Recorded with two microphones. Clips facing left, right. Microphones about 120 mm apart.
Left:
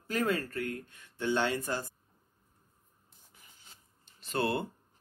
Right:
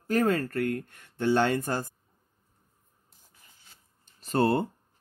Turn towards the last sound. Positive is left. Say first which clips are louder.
# right 7 dB
turn(degrees=-40)  # may be behind; listen again after turning